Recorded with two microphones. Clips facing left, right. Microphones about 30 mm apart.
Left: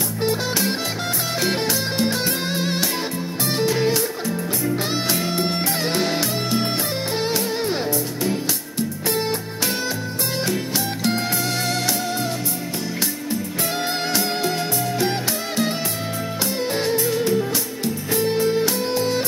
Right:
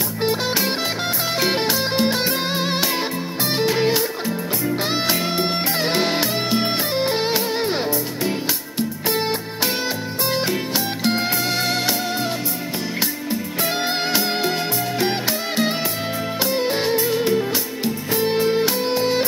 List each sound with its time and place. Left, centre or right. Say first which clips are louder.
0.2 s music: right 1 dB; right
5.0 s music: right 1 dB; right
14.1 s music: right 1 dB; right